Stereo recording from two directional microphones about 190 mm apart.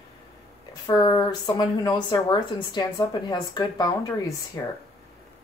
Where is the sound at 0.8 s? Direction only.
20° left (ahead or behind).